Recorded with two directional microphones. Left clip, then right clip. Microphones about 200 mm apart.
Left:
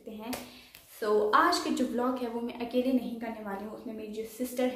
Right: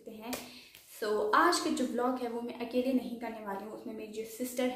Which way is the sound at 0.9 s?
Centre (ahead or behind).